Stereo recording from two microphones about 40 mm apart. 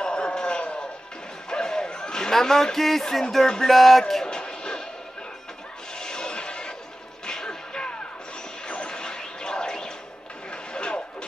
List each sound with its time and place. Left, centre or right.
0.0 s a sound: left
3.4 s music: centre
3.7 s speech: centre
4.3 s music: centre
5.9 s music: centre
8.6 s smash: left
10.5 s a sound: left